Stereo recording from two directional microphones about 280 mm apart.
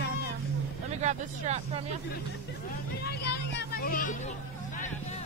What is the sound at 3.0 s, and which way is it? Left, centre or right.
Speech, left.